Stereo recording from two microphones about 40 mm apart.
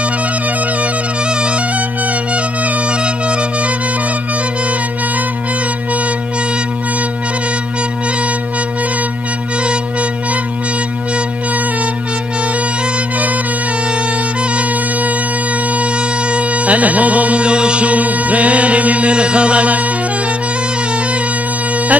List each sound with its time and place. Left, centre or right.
1.3 s music: right
14.5 s music: right